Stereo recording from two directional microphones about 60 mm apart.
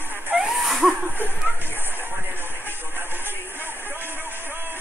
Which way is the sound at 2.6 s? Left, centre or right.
Right.